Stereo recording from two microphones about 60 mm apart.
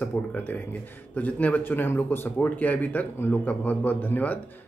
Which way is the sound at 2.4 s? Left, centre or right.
Left.